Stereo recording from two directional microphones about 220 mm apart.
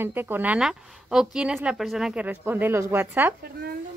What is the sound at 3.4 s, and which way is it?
Speech, 45° right (ahead or behind).